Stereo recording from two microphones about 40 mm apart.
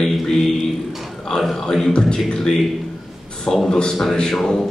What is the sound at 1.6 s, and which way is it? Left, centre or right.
Speech, centre.